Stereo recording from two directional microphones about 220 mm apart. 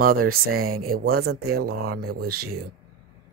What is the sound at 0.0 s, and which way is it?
Speech, 40° right (ahead or behind).